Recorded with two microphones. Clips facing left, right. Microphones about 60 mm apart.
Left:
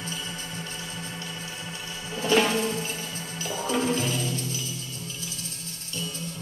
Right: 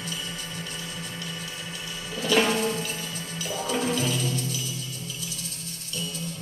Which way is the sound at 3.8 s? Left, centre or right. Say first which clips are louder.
Even; left.